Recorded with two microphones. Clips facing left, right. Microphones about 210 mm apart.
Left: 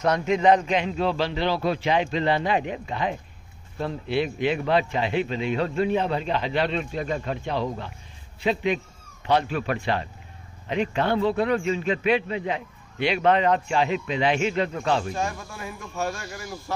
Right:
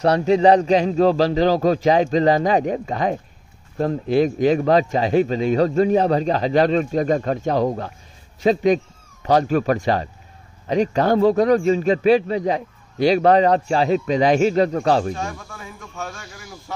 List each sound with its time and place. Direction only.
0.0 s a man's voice: 35° right (ahead or behind)
15.1 s speech: 5° left (ahead or behind)